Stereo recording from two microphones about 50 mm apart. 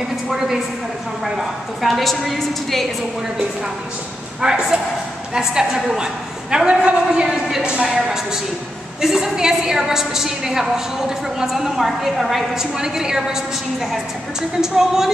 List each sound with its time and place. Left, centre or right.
0.3 s a woman's voice: centre
4.4 s a woman's voice: centre
6.5 s a woman's voice: centre
7.1 s a woman's voice: centre
7.6 s a woman's voice: centre
14.6 s a woman's voice: centre